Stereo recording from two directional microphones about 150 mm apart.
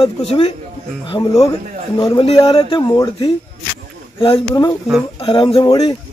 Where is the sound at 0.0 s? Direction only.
40° left (ahead or behind).